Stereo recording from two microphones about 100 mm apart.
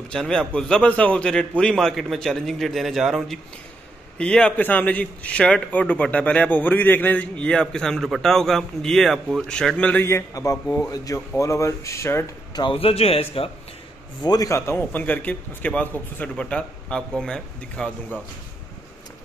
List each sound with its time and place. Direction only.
0.1 s a man's voice: 5° left (ahead or behind)
10.0 s a man's voice: 30° left (ahead or behind)
12.7 s a man's voice: 80° left
14.2 s speech: 40° left (ahead or behind)
14.7 s a man's voice: 20° left (ahead or behind)